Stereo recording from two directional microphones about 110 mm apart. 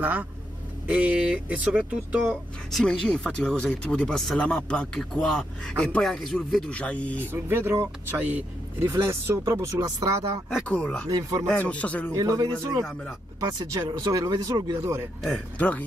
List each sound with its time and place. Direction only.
0.0 s speech: 15° right (ahead or behind)
2.7 s speech: 5° left (ahead or behind)
7.3 s speech: 20° right (ahead or behind)
8.8 s speech: 25° right (ahead or behind)
10.7 s speech: 10° left (ahead or behind)
11.1 s speech: 35° right (ahead or behind)
11.7 s speech: 10° left (ahead or behind)
12.1 s speech: 30° right (ahead or behind)
14.8 s speech: 20° right (ahead or behind)
15.5 s speech: 15° left (ahead or behind)